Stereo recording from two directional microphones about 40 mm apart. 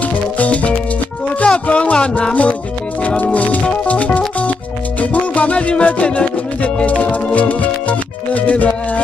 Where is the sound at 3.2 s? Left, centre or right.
Left.